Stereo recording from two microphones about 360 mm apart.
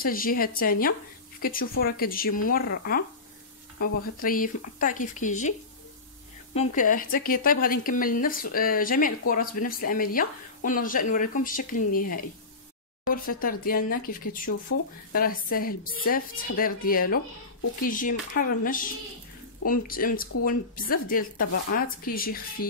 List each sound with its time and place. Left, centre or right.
0.0 s speech: left
6.5 s speech: centre